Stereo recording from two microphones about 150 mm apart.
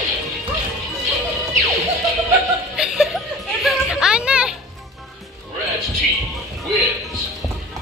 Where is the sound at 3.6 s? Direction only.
5° right (ahead or behind).